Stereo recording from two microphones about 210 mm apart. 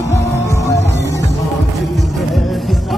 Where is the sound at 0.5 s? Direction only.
15° left (ahead or behind).